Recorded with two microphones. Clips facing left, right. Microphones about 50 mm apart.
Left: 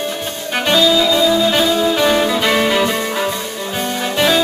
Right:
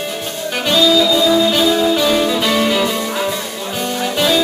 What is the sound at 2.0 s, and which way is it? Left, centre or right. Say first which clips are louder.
Music: left 1 dB; left.